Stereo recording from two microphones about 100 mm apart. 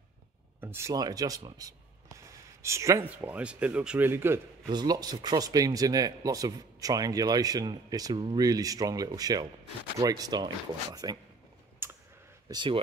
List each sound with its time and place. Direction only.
0.6 s speech: 25° right (ahead or behind)
0.9 s speech: 40° right (ahead or behind)
1.6 s a sound: 35° right (ahead or behind)
3.0 s speech: 20° right (ahead or behind)
4.1 s a man's voice: 25° right (ahead or behind)
4.6 s speech: 45° right (ahead or behind)
12.4 s speech: 45° right (ahead or behind)